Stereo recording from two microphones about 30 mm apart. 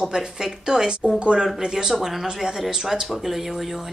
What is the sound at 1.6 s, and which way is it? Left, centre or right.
Speech, centre.